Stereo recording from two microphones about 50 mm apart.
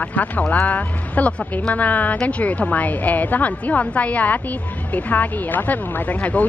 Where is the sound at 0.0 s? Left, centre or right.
Left.